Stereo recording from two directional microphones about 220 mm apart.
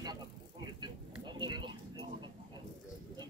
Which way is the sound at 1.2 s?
20° right (ahead or behind).